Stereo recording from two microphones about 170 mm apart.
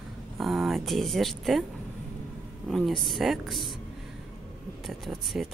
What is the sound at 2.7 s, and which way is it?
Speech, centre (ahead or behind).